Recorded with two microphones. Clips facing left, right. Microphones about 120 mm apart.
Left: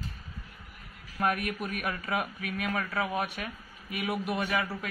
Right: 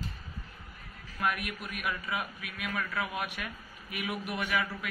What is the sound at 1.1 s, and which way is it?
A man's voice, 40° left (ahead or behind).